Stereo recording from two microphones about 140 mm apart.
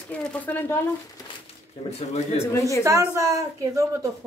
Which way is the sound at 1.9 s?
50° left (ahead or behind).